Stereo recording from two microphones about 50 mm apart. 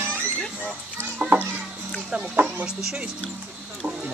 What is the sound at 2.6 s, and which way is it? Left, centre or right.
Speech, centre.